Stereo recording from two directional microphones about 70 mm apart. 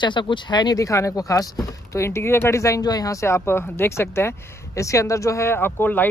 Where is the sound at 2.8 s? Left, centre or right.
Left.